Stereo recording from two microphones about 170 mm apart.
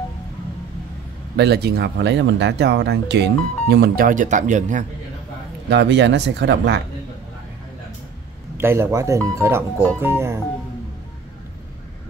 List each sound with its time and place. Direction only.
1.3 s speech: 70° right (ahead or behind); by 4.8 s 45° right (ahead or behind)
5.7 s speech: 90° right
8.5 s speech: 15° right (ahead or behind)